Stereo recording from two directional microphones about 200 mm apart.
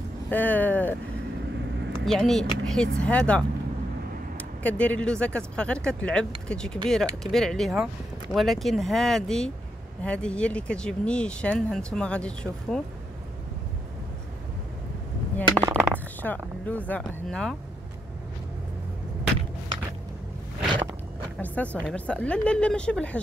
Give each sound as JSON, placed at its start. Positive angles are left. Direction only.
{"t": 0.3, "sound": "vehicle", "side_deg": 10}
{"t": 2.0, "sound": "speech", "side_deg": 0}
{"t": 15.4, "sound": "a sound", "side_deg": -20}
{"t": 16.2, "sound": "speech", "side_deg": 10}
{"t": 21.4, "sound": "speech", "side_deg": 5}